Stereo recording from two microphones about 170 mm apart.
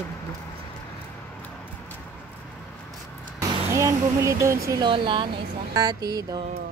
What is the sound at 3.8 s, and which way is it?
Speech, 15° right (ahead or behind).